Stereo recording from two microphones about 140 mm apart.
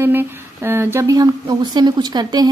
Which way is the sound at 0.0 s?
15° right (ahead or behind).